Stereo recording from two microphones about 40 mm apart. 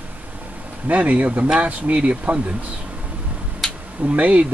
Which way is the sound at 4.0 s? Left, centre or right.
Right.